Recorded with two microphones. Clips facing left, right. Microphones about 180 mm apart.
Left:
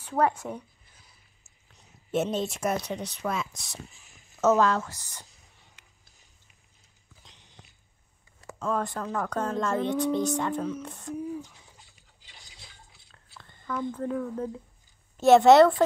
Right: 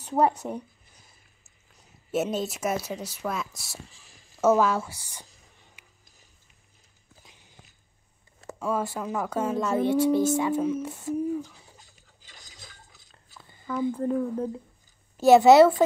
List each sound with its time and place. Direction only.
0.6 s a sound: 45° right (ahead or behind)
1.7 s speech: 5° right (ahead or behind)
5.8 s music: 10° right (ahead or behind)
7.2 s a sound: 5° right (ahead or behind)
8.5 s speech: 5° right (ahead or behind)
11.5 s drip: 40° right (ahead or behind)
13.4 s speech: 5° right (ahead or behind)
15.1 s speech: centre (ahead or behind)